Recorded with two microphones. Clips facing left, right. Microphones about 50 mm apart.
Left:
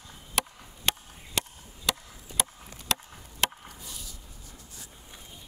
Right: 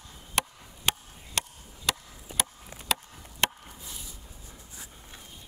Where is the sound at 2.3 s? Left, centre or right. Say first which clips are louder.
Even; right.